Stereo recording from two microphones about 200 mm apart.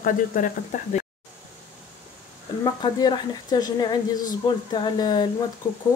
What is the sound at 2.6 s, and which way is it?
A woman's voice, 20° left (ahead or behind).